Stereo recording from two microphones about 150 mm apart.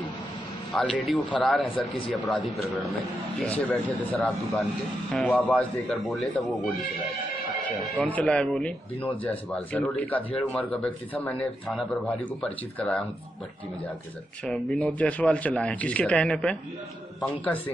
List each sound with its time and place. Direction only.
0.7 s speech: centre (ahead or behind)
8.0 s speech: 5° left (ahead or behind)
14.4 s speech: 5° left (ahead or behind)